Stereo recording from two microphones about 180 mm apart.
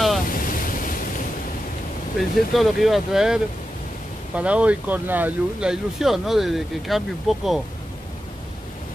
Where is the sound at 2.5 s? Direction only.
Centre (ahead or behind).